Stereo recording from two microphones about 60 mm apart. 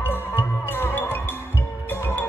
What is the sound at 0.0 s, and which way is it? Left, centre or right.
Music, left.